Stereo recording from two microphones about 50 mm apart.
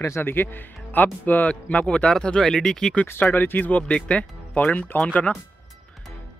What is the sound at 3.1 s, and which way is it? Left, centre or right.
Speech, left.